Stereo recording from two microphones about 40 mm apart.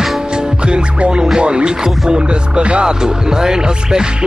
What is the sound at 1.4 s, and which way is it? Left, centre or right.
Speech, right.